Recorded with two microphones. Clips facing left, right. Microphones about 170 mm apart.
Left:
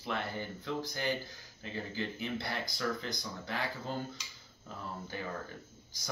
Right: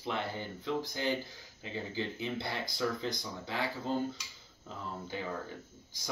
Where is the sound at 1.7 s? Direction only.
20° right (ahead or behind).